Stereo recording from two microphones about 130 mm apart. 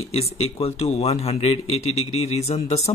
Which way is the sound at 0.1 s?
50° left (ahead or behind).